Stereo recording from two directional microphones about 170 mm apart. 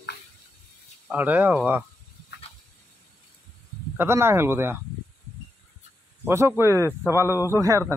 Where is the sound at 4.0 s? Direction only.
15° right (ahead or behind).